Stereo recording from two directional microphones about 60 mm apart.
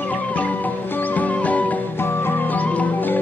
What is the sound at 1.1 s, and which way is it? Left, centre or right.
Music, left.